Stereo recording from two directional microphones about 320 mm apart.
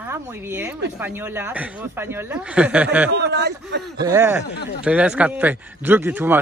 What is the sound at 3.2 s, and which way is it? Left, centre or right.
Speech, right.